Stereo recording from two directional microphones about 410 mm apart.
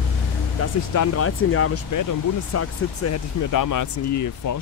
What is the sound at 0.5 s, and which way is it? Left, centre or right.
Speech, left.